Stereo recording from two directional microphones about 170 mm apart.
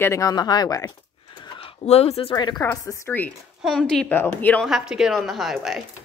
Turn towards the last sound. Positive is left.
turn(degrees=0)  # may be behind; listen again after turning